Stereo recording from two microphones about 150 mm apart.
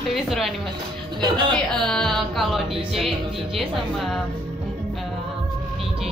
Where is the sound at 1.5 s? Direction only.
5° left (ahead or behind).